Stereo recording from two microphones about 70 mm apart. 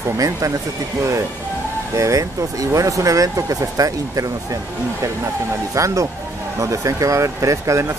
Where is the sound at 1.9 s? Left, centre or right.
Right.